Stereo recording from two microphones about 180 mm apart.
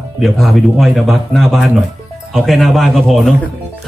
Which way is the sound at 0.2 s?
Centre (ahead or behind).